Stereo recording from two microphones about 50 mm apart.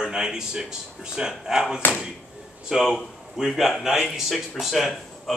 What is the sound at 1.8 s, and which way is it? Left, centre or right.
Speech, left.